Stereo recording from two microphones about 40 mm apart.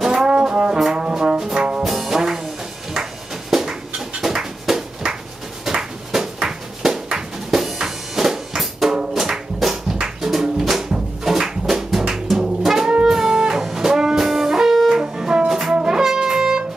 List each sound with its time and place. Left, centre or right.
0.0 s brass instrument: centre
1.8 s brass instrument: centre
3.4 s a sound: centre
9.1 s music: centre
12.3 s jazz: centre
13.0 s music: centre